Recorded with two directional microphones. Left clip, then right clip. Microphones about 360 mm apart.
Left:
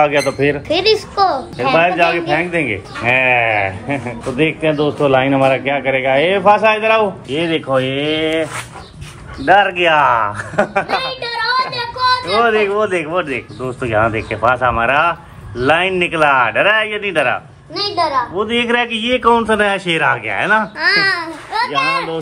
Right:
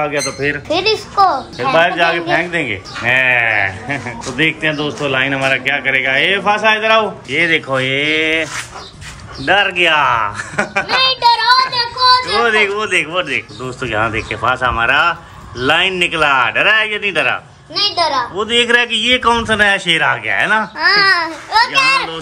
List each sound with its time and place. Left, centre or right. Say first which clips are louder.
0.0 s speech: left 4 dB; centre
9.5 s speech: left 1 dB; centre
17.7 s a child's voice: right 1 dB; centre
18.3 s speech: right 3 dB; centre
21.1 s a child's voice: right 6 dB; right